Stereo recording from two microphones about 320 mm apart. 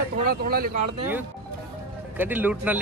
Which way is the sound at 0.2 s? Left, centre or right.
Right.